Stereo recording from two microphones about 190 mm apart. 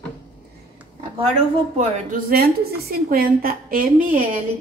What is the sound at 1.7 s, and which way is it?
A woman's voice, 50° right (ahead or behind).